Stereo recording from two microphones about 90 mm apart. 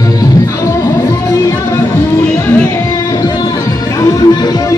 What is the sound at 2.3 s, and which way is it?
Music, 15° left (ahead or behind).